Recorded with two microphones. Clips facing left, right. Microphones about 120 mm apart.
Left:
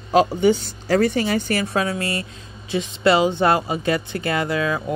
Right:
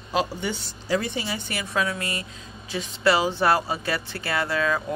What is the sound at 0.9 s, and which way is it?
Speech, 50° left (ahead or behind).